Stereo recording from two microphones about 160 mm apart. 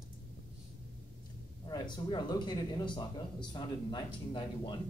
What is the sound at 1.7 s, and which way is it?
A man's voice, 25° left (ahead or behind).